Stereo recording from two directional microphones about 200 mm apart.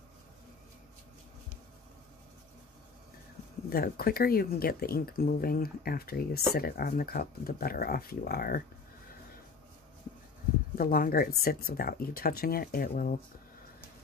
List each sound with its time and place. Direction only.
3.7 s speech: 50° left (ahead or behind)
10.8 s speech: 45° left (ahead or behind)